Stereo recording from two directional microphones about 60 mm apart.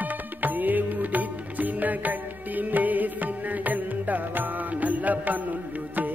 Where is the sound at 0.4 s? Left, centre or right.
Right.